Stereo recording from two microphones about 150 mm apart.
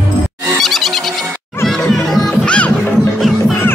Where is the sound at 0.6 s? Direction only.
Centre (ahead or behind).